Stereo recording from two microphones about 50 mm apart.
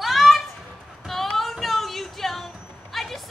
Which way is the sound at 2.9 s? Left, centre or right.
Centre.